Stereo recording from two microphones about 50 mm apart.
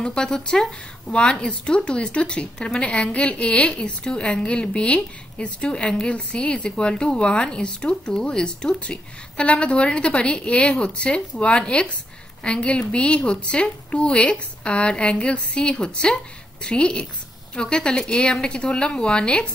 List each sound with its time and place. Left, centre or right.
0.0 s a woman's voice: centre